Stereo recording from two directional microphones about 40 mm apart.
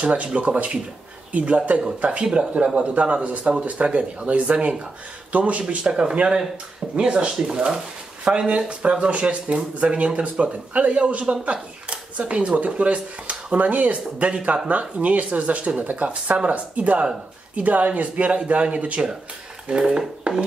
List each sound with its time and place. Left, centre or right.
0.0 s speech: right
5.9 s speech: right
20.3 s a sound: right